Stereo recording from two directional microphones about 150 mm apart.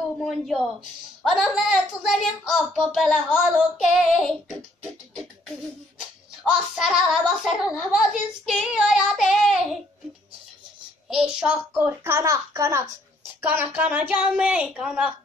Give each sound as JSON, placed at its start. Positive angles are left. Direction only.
{"t": 0.2, "sound": "a woman's voice", "side_deg": 0}
{"t": 6.5, "sound": "a child's voice", "side_deg": -5}
{"t": 11.1, "sound": "a child's voice", "side_deg": -5}